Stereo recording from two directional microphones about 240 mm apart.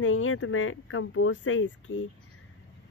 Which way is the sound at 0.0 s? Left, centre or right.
Left.